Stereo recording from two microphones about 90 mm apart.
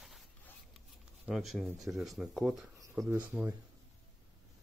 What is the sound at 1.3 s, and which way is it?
Speech, centre (ahead or behind).